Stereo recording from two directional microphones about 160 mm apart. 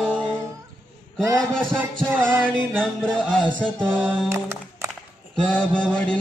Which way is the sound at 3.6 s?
5° left (ahead or behind).